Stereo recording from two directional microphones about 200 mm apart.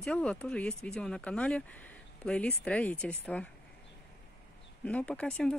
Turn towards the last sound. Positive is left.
turn(degrees=5)  # may be behind; listen again after turning